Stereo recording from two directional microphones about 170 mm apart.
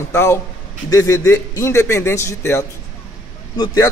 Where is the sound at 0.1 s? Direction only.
15° left (ahead or behind).